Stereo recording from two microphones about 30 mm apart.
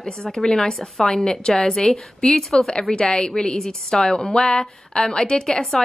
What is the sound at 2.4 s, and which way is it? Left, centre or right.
A woman's voice, centre.